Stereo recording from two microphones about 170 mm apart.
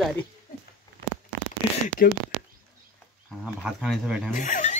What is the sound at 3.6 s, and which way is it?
Speech, 5° right (ahead or behind).